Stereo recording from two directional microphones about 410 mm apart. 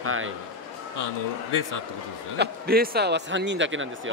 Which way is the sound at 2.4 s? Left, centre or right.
Right.